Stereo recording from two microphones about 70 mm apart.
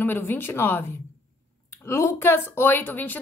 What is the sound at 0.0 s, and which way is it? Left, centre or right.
Speech, left.